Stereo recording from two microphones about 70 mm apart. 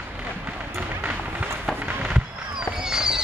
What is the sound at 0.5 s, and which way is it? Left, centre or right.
Run, right.